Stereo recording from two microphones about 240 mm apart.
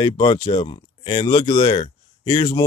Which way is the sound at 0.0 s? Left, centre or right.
Centre.